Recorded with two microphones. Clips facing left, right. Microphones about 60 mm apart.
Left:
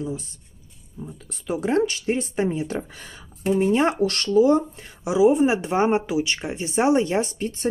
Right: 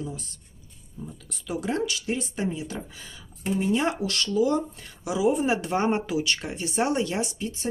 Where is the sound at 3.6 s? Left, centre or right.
Left.